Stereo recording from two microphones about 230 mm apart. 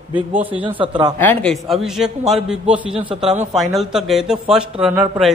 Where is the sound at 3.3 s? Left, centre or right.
Right.